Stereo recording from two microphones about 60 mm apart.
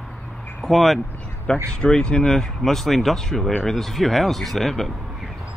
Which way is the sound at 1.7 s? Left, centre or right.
Centre.